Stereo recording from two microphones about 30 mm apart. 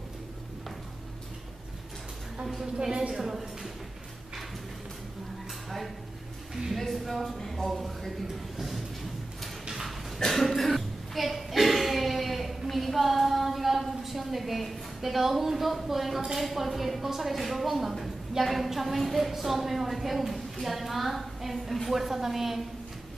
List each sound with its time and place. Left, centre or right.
2.4 s a woman's voice: centre
2.8 s a woman's voice: right
6.7 s music: centre
7.3 s a sound: centre
10.2 s cough: centre
16.3 s a woman's voice: centre